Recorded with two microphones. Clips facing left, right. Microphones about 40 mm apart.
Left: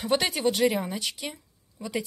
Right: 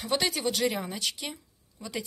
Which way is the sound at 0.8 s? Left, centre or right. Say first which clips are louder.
Left 2 dB; centre.